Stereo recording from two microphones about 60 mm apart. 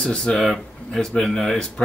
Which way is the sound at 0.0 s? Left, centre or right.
Centre.